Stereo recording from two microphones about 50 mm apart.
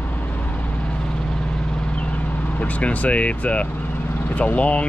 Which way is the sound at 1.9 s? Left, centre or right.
Left.